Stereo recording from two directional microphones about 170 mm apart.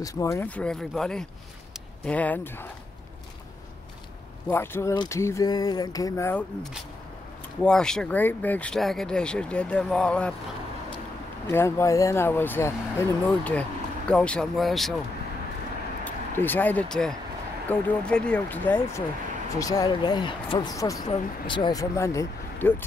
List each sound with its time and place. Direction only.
0.0 s speech: 20° left (ahead or behind)
4.5 s speech: 15° left (ahead or behind)
7.6 s speech: 5° left (ahead or behind)
11.4 s speech: 15° left (ahead or behind)
16.0 s speech: 10° left (ahead or behind)